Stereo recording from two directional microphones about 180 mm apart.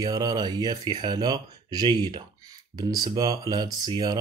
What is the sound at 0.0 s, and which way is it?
Speech, 20° right (ahead or behind).